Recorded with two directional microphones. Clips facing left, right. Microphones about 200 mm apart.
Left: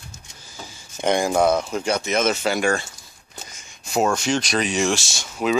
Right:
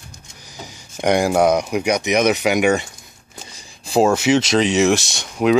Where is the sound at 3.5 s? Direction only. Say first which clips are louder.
Right 6 dB; 30° right (ahead or behind).